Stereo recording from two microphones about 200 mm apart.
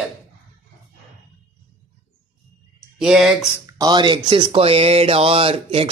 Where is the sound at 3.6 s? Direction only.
20° right (ahead or behind).